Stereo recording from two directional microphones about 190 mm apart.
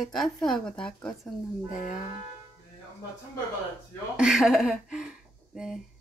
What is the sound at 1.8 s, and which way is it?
Music, 40° left (ahead or behind).